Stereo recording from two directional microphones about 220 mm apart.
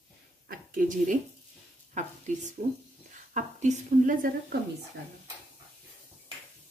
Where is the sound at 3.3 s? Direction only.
35° right (ahead or behind).